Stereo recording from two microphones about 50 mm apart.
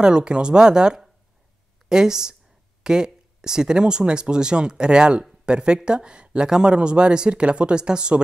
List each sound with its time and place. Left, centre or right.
0.0 s speech: centre